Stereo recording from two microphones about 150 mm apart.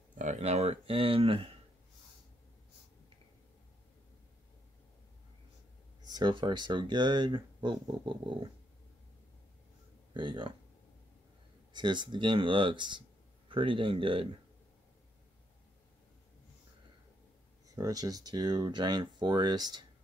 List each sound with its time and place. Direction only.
0.2 s speech: 50° right (ahead or behind)
6.0 s speech: 30° right (ahead or behind)
10.1 s speech: 35° right (ahead or behind)
11.7 s speech: 30° right (ahead or behind)
17.6 s speech: 25° right (ahead or behind)